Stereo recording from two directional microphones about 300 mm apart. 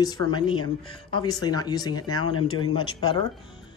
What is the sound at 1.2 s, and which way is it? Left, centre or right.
A woman's voice, centre.